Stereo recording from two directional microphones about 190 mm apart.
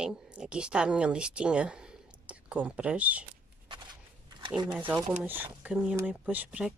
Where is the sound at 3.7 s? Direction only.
25° right (ahead or behind).